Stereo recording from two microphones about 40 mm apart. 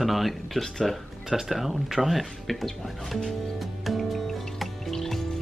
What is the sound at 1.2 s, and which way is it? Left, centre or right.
Speech, centre.